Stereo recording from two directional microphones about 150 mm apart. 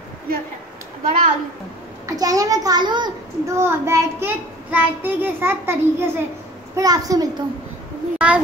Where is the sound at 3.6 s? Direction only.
20° right (ahead or behind).